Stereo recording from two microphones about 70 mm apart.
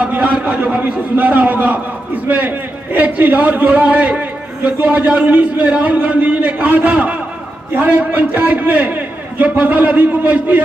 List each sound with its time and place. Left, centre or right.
0.0 s a man's voice: centre